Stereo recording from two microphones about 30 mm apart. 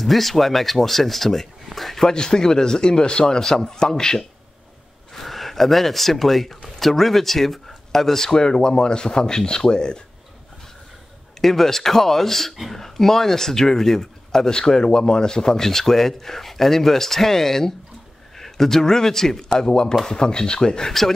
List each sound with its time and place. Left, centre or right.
0.0 s speech: centre
2.0 s speech: left
5.1 s speech: centre; by 10.0 s left
11.4 s speech: centre
19.6 s speech: left